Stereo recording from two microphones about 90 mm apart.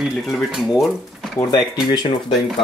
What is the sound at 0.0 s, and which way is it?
Speech, centre (ahead or behind).